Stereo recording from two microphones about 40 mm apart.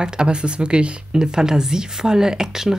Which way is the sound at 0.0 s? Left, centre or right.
Right.